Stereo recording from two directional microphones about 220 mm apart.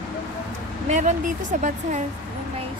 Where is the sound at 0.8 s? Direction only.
35° right (ahead or behind).